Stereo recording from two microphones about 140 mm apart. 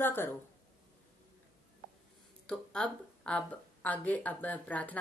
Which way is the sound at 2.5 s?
5° left (ahead or behind).